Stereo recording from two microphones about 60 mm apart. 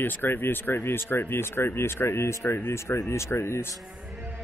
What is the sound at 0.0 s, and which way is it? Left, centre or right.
Speech, left.